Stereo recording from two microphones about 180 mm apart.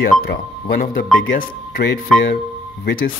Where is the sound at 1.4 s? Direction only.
70° left (ahead or behind).